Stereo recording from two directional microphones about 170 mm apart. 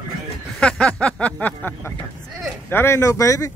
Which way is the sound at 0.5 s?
5° left (ahead or behind).